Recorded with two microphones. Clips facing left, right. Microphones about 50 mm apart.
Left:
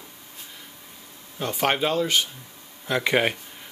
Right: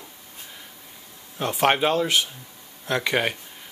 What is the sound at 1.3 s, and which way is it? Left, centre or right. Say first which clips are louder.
Speech: right 3 dB; centre.